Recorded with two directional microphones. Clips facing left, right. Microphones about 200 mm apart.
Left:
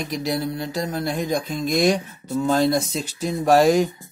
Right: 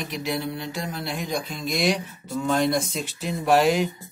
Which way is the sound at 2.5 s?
35° left (ahead or behind).